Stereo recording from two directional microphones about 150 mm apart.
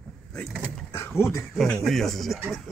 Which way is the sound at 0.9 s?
15° left (ahead or behind).